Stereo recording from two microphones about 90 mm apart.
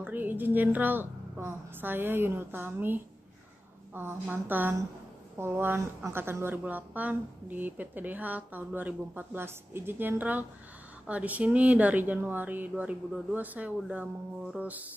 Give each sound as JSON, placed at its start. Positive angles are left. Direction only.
{"t": 0.0, "sound": "a woman's voice", "side_deg": -20}